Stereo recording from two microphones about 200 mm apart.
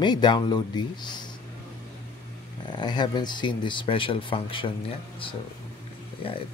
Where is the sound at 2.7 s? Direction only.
20° left (ahead or behind).